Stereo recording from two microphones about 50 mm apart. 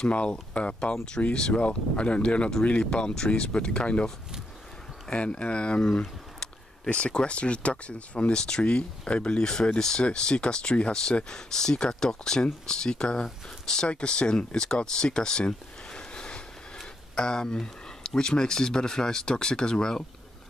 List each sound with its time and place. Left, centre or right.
0.0 s speech: left